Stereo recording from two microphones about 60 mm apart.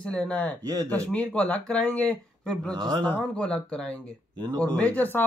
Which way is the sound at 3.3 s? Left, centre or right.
Centre.